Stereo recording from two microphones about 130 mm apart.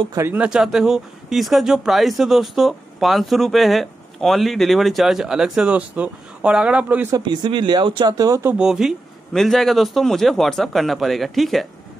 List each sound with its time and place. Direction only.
0.3 s speech: 5° right (ahead or behind)
7.1 s speech: 35° right (ahead or behind)
8.5 s speech: 5° right (ahead or behind)